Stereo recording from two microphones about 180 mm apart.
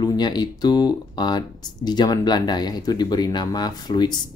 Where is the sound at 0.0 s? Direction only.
25° left (ahead or behind).